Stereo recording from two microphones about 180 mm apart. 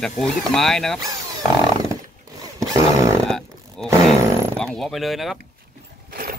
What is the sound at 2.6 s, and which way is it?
Roar, 20° right (ahead or behind).